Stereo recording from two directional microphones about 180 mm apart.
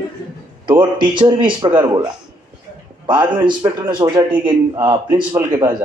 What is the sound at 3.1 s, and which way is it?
Speech, 25° right (ahead or behind).